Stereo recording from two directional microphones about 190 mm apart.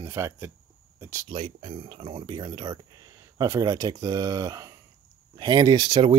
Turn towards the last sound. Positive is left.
turn(degrees=-25)  # may be behind; listen again after turning